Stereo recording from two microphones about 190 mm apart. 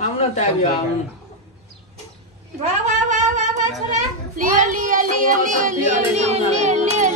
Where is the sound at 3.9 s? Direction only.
40° right (ahead or behind).